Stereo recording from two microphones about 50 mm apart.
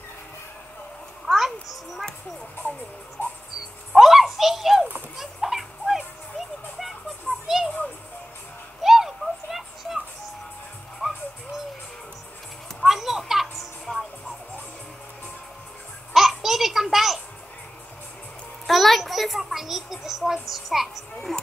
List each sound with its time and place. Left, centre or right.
1.2 s a sound: centre
3.5 s bird: centre
5.1 s music: centre
7.4 s a sound: centre
8.8 s a sound: centre
11.0 s music: centre
12.8 s music: centre
16.1 s babbling: centre
18.7 s a child's voice: centre